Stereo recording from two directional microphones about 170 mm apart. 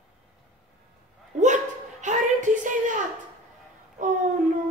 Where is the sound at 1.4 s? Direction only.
45° right (ahead or behind).